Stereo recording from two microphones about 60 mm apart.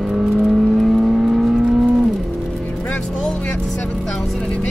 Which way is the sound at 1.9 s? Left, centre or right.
Centre.